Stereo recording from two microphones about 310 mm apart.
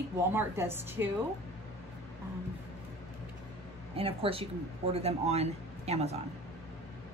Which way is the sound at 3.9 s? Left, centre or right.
Centre.